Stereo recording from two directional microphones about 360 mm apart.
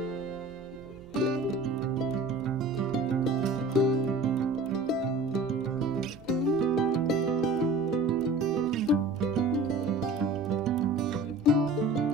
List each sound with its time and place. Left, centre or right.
1.2 s music: centre
3.3 s music: centre